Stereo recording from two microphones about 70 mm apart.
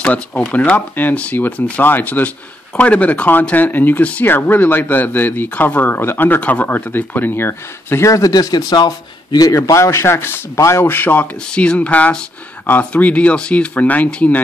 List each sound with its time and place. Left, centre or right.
0.0 s speech: centre; by 8.1 s left
8.1 s a man's voice: left
9.6 s speech: left
11.5 s speech: centre